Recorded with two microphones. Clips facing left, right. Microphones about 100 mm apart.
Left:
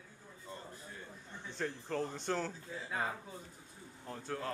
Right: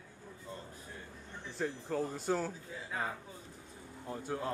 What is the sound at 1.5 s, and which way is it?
Speech, 10° right (ahead or behind).